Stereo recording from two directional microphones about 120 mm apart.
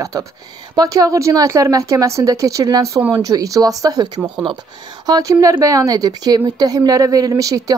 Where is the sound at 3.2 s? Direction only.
30° right (ahead or behind).